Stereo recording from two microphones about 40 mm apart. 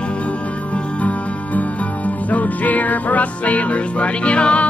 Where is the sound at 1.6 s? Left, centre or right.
Left.